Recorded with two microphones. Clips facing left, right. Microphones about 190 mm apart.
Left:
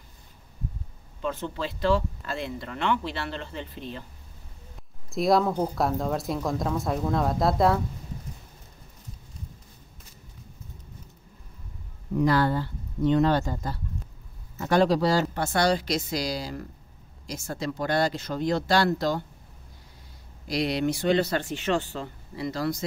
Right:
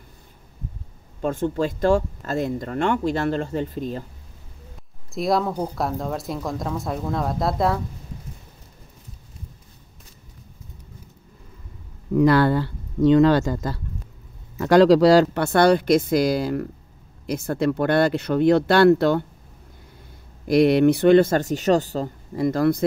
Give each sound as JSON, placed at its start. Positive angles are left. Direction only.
{"t": 1.2, "sound": "speech", "side_deg": -45}
{"t": 5.1, "sound": "speech", "side_deg": 0}
{"t": 12.1, "sound": "speech", "side_deg": -80}
{"t": 20.4, "sound": "speech", "side_deg": -55}